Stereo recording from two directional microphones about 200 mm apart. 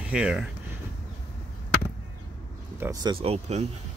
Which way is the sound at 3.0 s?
25° right (ahead or behind).